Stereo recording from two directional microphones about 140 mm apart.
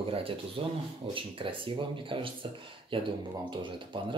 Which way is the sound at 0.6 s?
40° right (ahead or behind).